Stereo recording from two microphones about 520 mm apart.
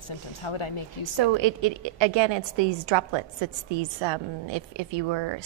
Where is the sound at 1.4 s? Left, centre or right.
Right.